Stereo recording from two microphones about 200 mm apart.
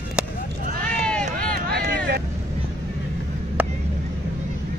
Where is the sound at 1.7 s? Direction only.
55° right (ahead or behind).